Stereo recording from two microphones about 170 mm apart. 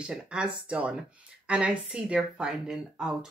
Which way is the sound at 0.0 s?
5° right (ahead or behind).